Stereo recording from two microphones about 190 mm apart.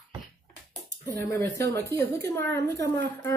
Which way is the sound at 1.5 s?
15° left (ahead or behind).